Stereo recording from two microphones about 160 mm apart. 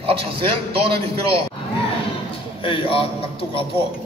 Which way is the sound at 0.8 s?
35° right (ahead or behind).